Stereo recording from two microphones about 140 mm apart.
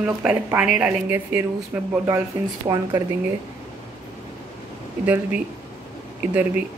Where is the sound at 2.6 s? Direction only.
25° right (ahead or behind).